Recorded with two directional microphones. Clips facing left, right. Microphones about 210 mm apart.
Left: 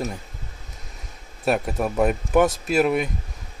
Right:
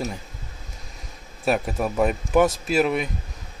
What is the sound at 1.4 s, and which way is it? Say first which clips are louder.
Speech: left 1 dB; centre (ahead or behind).